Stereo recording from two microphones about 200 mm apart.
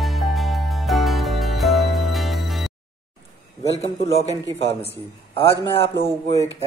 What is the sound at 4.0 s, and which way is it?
Speech, 30° left (ahead or behind).